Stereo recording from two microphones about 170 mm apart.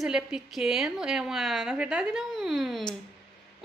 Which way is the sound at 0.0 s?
5° right (ahead or behind).